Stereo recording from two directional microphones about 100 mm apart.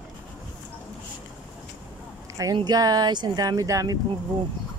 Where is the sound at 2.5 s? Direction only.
40° right (ahead or behind).